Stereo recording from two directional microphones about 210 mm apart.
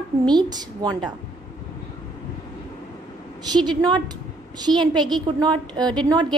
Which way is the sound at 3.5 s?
20° right (ahead or behind).